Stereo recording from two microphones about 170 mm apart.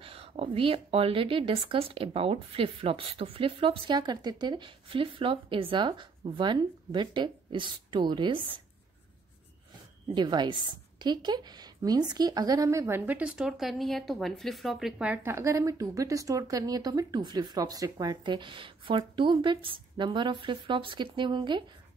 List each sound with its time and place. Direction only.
0.0 s speech: 35° right (ahead or behind)
10.1 s a woman's voice: 25° right (ahead or behind)